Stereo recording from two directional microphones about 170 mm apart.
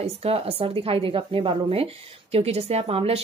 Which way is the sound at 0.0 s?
35° right (ahead or behind).